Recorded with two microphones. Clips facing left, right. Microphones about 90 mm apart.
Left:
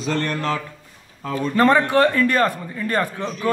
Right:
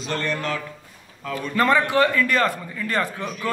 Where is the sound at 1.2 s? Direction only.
30° left (ahead or behind).